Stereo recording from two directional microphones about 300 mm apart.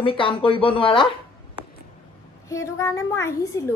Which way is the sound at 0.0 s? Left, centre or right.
Centre.